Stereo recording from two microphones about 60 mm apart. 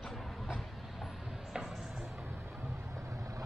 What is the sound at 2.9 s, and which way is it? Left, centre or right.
Vehicle, right.